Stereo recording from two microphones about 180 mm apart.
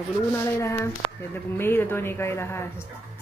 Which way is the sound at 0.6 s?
15° left (ahead or behind).